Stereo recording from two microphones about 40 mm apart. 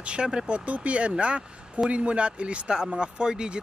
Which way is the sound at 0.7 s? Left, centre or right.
Right.